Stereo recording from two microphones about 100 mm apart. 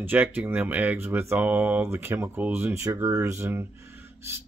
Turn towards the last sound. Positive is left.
turn(degrees=-25)  # may be behind; listen again after turning